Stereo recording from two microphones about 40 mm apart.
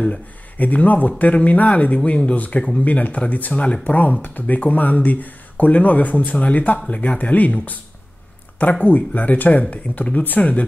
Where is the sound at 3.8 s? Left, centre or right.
Left.